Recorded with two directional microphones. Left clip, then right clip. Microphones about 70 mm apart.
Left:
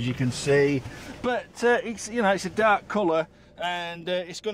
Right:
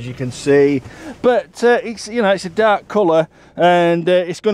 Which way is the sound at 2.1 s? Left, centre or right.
Right.